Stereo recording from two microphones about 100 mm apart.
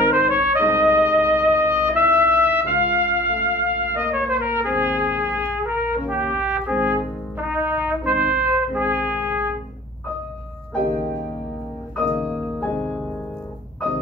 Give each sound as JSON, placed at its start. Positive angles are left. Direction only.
{"t": 0.0, "sound": "music", "side_deg": -15}
{"t": 3.9, "sound": "trumpet", "side_deg": -20}
{"t": 12.1, "sound": "music", "side_deg": -10}
{"t": 12.5, "sound": "music", "side_deg": 10}